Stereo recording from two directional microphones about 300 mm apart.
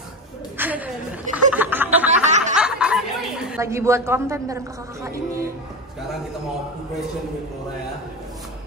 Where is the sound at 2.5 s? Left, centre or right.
Centre.